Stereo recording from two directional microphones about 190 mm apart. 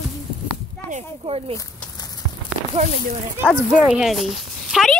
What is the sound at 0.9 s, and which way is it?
Speech, 35° right (ahead or behind).